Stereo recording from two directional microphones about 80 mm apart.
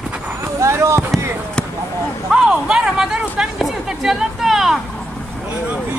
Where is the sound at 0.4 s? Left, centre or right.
Right.